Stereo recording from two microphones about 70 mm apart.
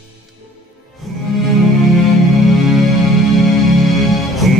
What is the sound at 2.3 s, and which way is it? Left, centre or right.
Music, centre.